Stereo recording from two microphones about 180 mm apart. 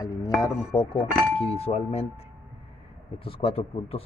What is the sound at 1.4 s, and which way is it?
Speech, 35° left (ahead or behind).